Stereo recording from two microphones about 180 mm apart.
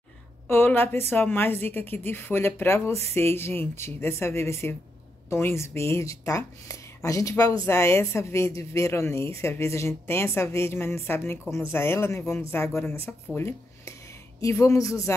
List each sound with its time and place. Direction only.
0.5 s speech: 10° left (ahead or behind)